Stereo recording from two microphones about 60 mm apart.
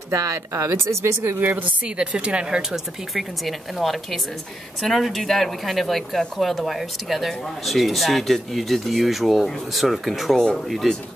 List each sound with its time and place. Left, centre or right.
0.1 s a woman's voice: right
1.4 s a woman's voice: right
1.9 s speech: centre